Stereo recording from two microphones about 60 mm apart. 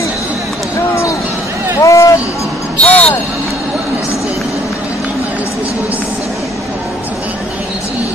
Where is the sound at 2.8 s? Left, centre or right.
Left.